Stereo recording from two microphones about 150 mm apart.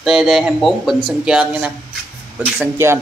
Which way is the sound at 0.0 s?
Centre (ahead or behind).